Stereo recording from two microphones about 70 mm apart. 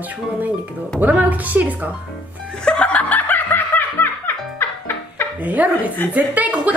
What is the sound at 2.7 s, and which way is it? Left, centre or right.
Music, centre.